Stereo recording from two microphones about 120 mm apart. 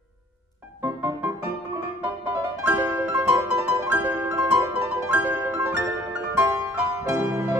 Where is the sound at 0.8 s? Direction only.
25° right (ahead or behind).